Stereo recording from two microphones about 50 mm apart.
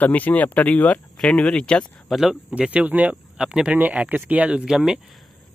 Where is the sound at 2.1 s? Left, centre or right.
Centre.